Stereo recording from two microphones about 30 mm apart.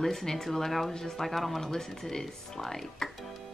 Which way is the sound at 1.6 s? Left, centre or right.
Centre.